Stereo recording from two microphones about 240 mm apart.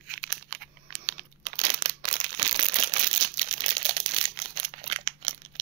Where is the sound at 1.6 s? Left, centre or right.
Right.